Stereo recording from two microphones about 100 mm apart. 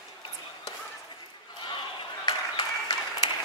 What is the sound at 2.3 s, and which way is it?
Applause, 45° left (ahead or behind).